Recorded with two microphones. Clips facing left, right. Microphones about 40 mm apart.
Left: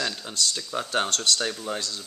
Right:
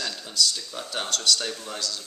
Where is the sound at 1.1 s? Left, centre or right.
Left.